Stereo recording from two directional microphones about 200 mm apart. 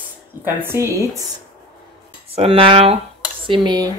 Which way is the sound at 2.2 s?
30° right (ahead or behind).